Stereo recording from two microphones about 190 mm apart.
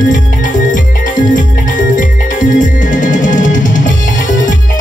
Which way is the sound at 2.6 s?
40° left (ahead or behind).